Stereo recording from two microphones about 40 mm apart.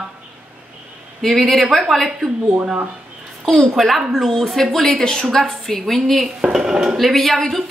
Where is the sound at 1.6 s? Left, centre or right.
Centre.